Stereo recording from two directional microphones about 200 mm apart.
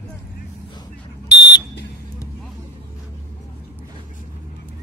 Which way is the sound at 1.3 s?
60° left (ahead or behind).